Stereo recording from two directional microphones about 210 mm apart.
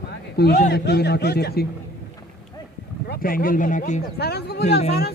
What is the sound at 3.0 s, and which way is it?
Speech, 45° left (ahead or behind).